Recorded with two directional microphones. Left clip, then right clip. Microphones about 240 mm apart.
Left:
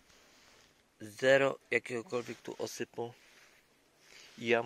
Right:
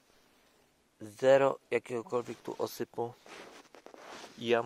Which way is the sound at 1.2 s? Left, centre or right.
Centre.